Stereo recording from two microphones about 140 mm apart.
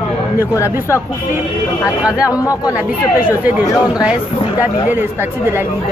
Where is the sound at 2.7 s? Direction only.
10° right (ahead or behind).